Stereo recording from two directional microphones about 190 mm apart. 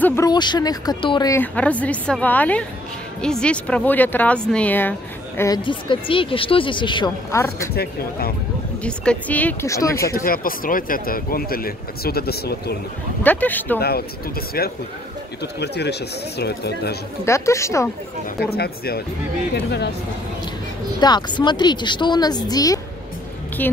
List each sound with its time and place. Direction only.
0.0 s a woman's voice: 15° left (ahead or behind)
5.4 s speech: 20° left (ahead or behind)
7.3 s a woman's voice: 15° left (ahead or behind)
7.7 s speech: 55° left (ahead or behind)
8.8 s a woman's voice: 5° left (ahead or behind)
10.1 s speech: 50° left (ahead or behind)
13.2 s a woman's voice: 10° left (ahead or behind)
13.7 s speech: 55° left (ahead or behind)
17.2 s a woman's voice: 15° left (ahead or behind)
18.4 s speech: 55° left (ahead or behind)
21.0 s a woman's voice: 25° left (ahead or behind)